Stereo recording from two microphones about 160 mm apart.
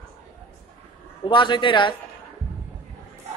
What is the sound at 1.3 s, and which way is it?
Speech, 30° left (ahead or behind).